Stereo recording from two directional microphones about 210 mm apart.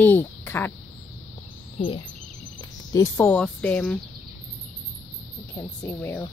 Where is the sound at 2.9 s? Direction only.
10° left (ahead or behind).